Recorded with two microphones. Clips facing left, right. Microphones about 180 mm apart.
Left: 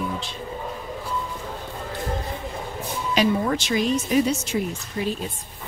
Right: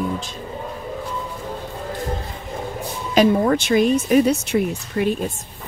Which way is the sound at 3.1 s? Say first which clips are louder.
Right 6 dB; 50° right (ahead or behind).